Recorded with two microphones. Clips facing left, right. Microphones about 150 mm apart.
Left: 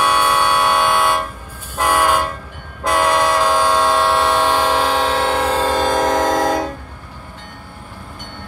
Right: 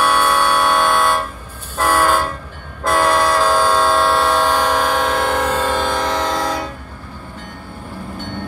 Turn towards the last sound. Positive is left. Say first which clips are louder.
# left 4 dB
turn(degrees=45)  # may be behind; listen again after turning